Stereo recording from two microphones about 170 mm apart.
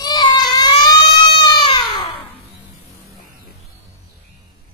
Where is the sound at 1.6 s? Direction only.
30° left (ahead or behind).